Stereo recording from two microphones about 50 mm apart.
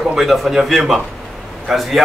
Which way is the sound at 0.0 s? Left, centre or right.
Centre.